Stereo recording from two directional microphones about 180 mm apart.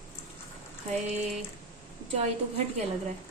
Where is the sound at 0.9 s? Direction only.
40° right (ahead or behind).